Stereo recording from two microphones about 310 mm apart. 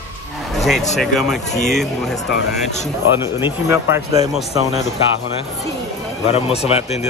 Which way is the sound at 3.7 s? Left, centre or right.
Centre.